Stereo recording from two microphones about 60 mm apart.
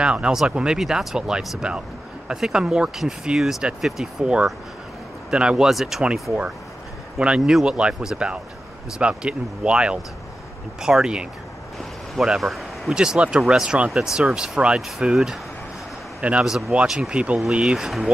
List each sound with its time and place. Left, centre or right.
0.0 s speech: centre
5.7 s speech: centre
7.2 s speech: centre
12.4 s speech: centre
12.9 s speech: centre
16.2 s a man's voice: right
16.4 s speech: centre
17.1 s speech: centre